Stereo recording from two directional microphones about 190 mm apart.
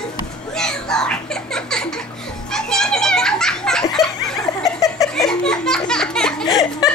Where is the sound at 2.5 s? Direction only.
5° left (ahead or behind).